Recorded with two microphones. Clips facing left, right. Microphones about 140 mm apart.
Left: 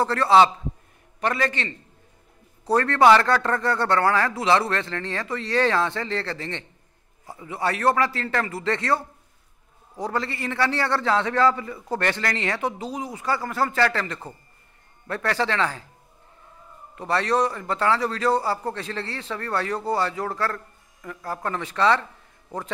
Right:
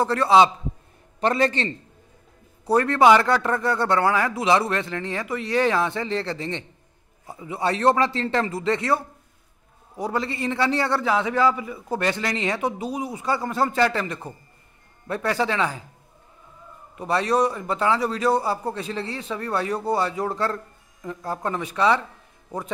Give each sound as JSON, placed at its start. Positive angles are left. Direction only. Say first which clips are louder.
{"t": 0.0, "sound": "a man's voice", "louder": "even", "side_deg": -15}
{"t": 1.2, "sound": "a man's voice", "louder": "right 4 dB", "side_deg": -30}
{"t": 2.6, "sound": "a man's voice", "louder": "right 1 dB", "side_deg": -15}
{"t": 16.9, "sound": "a man's voice", "louder": "right 1 dB", "side_deg": -15}